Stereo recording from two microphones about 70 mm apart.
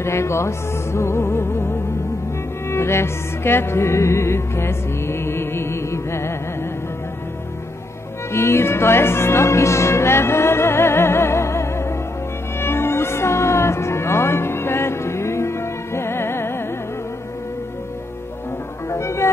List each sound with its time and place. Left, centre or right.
0.0 s music: left
8.3 s music: left
18.9 s music: left